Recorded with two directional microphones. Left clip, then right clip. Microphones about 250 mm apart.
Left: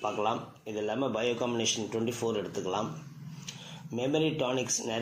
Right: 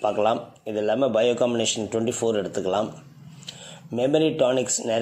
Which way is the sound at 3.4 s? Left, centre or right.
Right.